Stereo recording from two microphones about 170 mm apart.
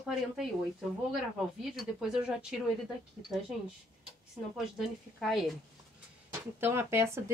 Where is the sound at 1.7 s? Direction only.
Centre (ahead or behind).